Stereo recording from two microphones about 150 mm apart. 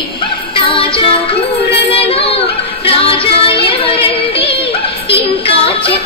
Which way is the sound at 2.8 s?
35° left (ahead or behind).